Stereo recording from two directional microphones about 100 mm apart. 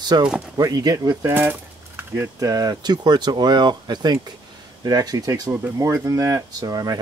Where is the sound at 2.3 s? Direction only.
35° right (ahead or behind).